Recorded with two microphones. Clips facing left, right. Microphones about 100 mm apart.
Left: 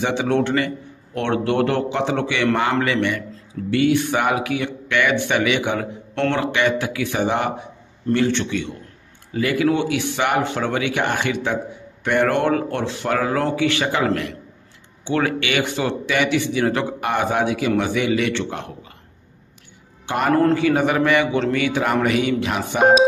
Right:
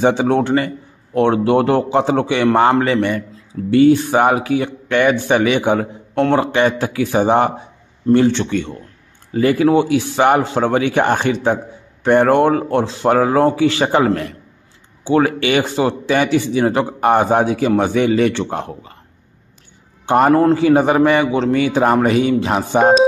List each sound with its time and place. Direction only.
0.0 s a man's voice: 30° right (ahead or behind)
8.5 s a man's voice: 50° right (ahead or behind)
9.3 s a man's voice: 35° right (ahead or behind)
20.2 s a man's voice: 20° right (ahead or behind)